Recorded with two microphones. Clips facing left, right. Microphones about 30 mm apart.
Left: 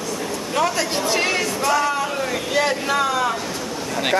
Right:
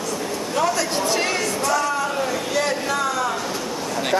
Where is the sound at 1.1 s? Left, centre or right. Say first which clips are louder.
Left 1 dB; centre.